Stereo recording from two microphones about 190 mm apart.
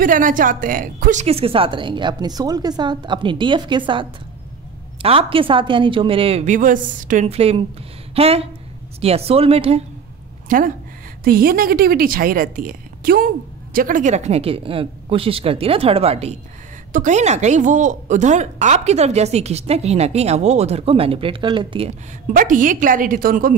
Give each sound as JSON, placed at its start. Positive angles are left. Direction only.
{"t": 0.0, "sound": "a woman's voice", "side_deg": -45}
{"t": 1.2, "sound": "a woman's voice", "side_deg": -30}
{"t": 11.2, "sound": "a woman's voice", "side_deg": -50}
{"t": 22.3, "sound": "a woman's voice", "side_deg": -45}